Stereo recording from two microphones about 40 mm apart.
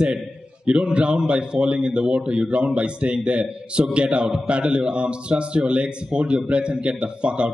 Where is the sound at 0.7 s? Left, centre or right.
Right.